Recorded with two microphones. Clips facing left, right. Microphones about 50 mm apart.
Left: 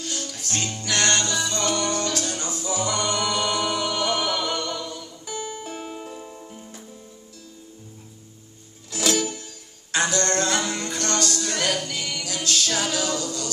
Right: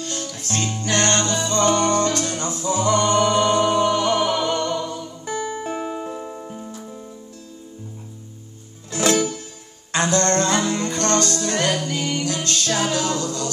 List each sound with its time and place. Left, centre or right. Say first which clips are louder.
0.0 s music: right 3 dB; right
8.9 s music: right 5 dB; right